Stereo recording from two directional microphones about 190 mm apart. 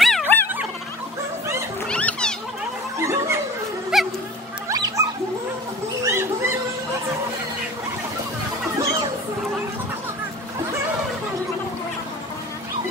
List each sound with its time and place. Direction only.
0.0 s dog: centre (ahead or behind)
1.9 s music: 5° left (ahead or behind)
3.0 s a sound: 15° right (ahead or behind)
3.9 s music: 5° right (ahead or behind)
4.6 s cat: 15° right (ahead or behind)
6.0 s children playing: 15° right (ahead or behind)